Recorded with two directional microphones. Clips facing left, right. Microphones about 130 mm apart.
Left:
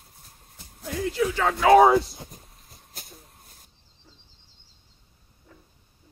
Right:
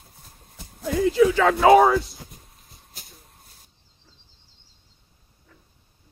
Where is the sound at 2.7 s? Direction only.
55° left (ahead or behind).